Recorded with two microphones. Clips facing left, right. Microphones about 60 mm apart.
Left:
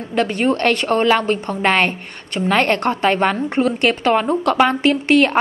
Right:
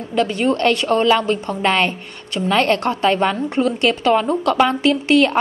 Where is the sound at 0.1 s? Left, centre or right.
Left.